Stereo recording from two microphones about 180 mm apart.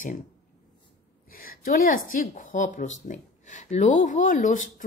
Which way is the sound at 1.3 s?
50° left (ahead or behind).